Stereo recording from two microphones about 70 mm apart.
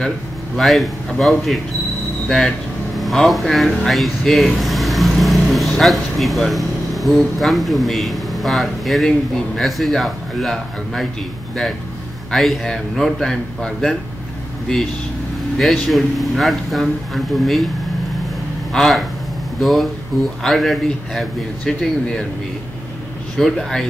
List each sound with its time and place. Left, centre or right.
0.6 s a man's voice: centre
12.3 s a man's voice: centre
15.5 s a man's voice: centre
18.7 s a man's voice: centre
23.3 s a man's voice: centre